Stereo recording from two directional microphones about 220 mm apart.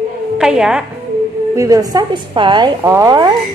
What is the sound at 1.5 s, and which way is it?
A woman's voice, 15° right (ahead or behind).